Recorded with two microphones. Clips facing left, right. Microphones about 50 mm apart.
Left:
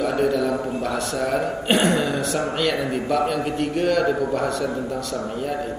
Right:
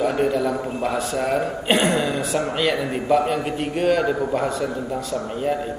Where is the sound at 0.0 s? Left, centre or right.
Right.